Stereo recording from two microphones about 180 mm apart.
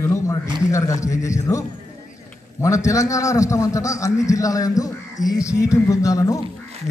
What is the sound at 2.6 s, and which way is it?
A man's voice, 15° left (ahead or behind).